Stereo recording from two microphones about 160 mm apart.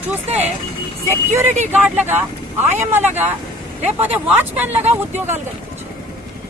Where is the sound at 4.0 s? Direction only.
10° right (ahead or behind).